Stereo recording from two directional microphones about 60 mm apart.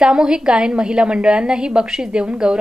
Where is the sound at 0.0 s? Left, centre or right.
Centre.